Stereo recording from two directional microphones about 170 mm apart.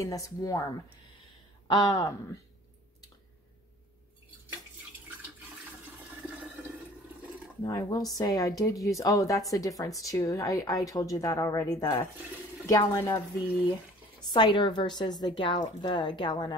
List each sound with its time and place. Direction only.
0.0 s a woman's voice: 20° left (ahead or behind)
1.7 s a woman's voice: 20° left (ahead or behind)
6.2 s water: 5° right (ahead or behind)
7.6 s a woman's voice: 20° left (ahead or behind)
14.3 s a woman's voice: 25° left (ahead or behind)